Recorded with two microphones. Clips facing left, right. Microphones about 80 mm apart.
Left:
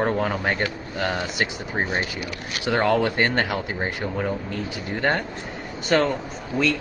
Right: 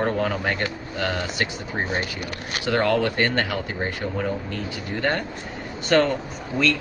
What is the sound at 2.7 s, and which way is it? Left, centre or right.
A man's voice, centre.